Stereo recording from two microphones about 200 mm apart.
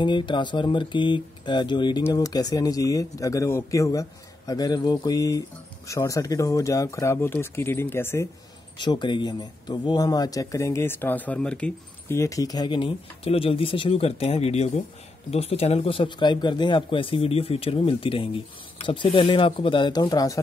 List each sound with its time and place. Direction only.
0.0 s speech: 25° left (ahead or behind)